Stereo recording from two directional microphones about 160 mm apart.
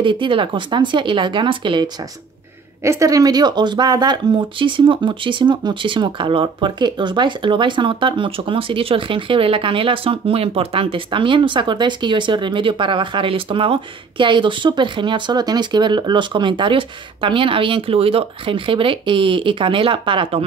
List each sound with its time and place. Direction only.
0.0 s speech: 30° right (ahead or behind)
2.8 s speech: 20° right (ahead or behind); by 20.4 s 35° right (ahead or behind)